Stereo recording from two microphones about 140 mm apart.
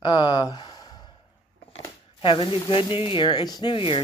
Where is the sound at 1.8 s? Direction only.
40° left (ahead or behind).